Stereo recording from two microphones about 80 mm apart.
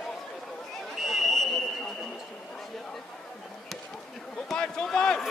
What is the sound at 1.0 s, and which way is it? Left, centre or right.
Buzzer, centre.